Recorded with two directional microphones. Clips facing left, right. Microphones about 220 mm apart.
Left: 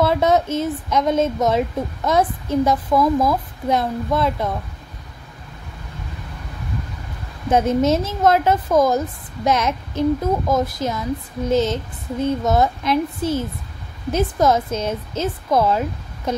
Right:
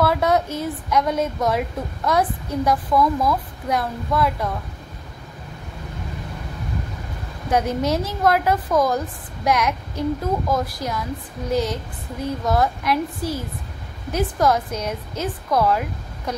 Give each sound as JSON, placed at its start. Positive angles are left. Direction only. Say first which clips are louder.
{"t": 0.0, "sound": "a woman's voice", "louder": "left 2 dB", "side_deg": 20}
{"t": 7.4, "sound": "a woman's voice", "louder": "left 4 dB", "side_deg": 25}